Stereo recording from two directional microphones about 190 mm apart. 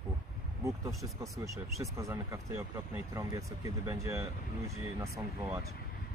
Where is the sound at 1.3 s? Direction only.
15° right (ahead or behind).